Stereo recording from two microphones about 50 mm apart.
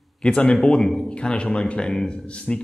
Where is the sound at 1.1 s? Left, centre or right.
Left.